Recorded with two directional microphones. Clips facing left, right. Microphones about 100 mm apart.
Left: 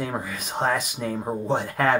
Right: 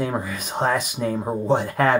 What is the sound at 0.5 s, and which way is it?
Speech, 5° right (ahead or behind).